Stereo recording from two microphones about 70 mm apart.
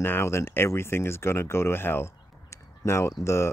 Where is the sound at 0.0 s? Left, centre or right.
Left.